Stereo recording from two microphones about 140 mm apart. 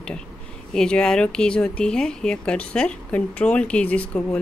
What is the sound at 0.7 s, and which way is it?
Speech, 5° left (ahead or behind).